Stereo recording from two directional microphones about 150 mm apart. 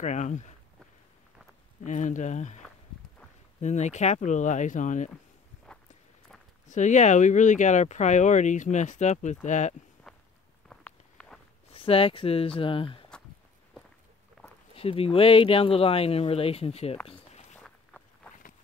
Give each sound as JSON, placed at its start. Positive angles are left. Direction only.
{"t": 0.0, "sound": "speech", "side_deg": 55}
{"t": 1.9, "sound": "speech", "side_deg": 55}
{"t": 3.6, "sound": "speech", "side_deg": 50}
{"t": 6.7, "sound": "speech", "side_deg": 55}
{"t": 10.1, "sound": "walk", "side_deg": 0}
{"t": 10.7, "sound": "a sound", "side_deg": 5}
{"t": 11.7, "sound": "speech", "side_deg": 40}
{"t": 14.4, "sound": "a sound", "side_deg": 5}
{"t": 14.8, "sound": "speech", "side_deg": 40}
{"t": 17.1, "sound": "a sound", "side_deg": 45}
{"t": 17.6, "sound": "vehicle", "side_deg": 5}